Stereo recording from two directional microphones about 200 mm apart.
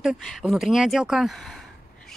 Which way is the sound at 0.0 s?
Centre (ahead or behind).